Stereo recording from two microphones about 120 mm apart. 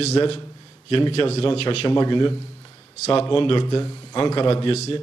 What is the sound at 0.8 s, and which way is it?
A man's voice, 50° left (ahead or behind).